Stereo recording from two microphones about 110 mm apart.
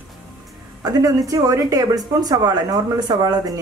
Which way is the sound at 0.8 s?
35° right (ahead or behind).